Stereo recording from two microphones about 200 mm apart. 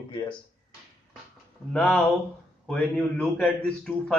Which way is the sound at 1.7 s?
5° left (ahead or behind).